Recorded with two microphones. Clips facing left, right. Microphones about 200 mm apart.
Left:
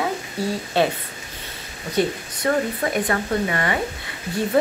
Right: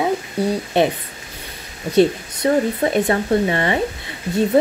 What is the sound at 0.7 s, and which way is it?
Speech, 20° right (ahead or behind).